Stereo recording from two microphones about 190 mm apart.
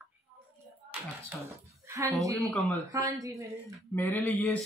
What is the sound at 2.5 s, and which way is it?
Speech, centre (ahead or behind).